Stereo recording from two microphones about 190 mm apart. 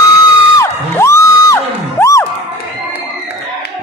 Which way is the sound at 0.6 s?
15° left (ahead or behind).